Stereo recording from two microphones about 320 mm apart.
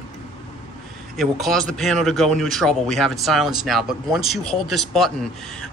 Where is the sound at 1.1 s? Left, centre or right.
Centre.